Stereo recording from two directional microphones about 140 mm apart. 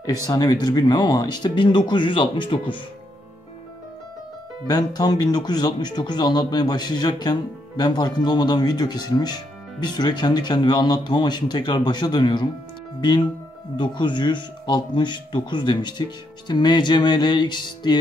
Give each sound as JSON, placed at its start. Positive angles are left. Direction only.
{"t": 0.0, "sound": "speech", "side_deg": 25}
{"t": 4.6, "sound": "speech", "side_deg": 30}
{"t": 13.7, "sound": "speech", "side_deg": 35}